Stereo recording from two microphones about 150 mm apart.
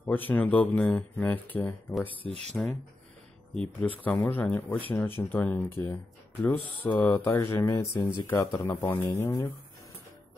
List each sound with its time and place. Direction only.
0.0 s speech: 10° left (ahead or behind)
4.0 s speech: 10° left (ahead or behind)